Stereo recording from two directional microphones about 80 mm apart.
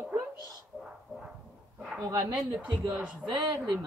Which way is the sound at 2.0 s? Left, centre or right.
Right.